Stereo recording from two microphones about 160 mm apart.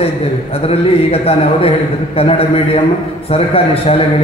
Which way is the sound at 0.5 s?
40° left (ahead or behind).